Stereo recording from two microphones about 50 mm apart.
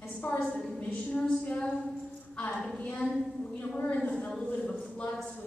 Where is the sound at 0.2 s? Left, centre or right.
Left.